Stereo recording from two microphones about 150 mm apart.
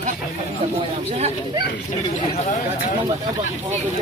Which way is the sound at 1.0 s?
45° right (ahead or behind).